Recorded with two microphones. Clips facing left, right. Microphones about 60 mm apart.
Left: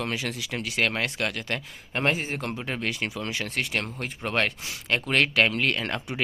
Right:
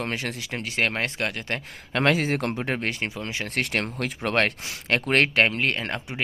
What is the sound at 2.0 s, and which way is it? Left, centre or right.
Speech, right.